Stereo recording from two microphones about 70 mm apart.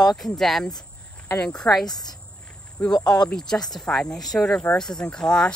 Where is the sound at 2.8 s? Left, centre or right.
Centre.